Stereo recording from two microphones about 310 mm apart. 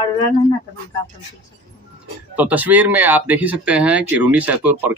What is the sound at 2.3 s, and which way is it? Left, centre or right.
Speech, centre.